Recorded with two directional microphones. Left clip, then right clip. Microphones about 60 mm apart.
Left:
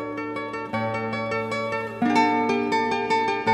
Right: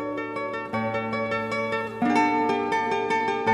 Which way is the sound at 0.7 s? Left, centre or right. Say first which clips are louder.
Left 1 dB; left.